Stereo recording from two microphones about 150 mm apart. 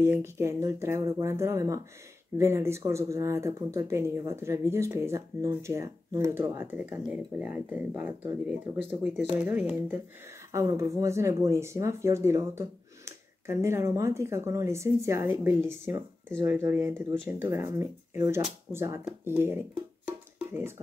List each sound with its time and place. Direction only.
0.0 s speech: 20° right (ahead or behind)
10.5 s speech: 20° right (ahead or behind)